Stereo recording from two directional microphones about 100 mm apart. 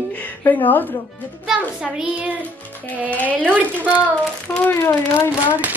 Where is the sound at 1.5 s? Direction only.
10° right (ahead or behind).